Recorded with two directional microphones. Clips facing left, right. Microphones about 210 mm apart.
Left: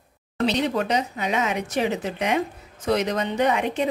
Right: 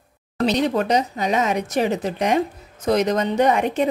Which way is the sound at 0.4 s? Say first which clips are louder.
Right 3 dB; 45° right (ahead or behind).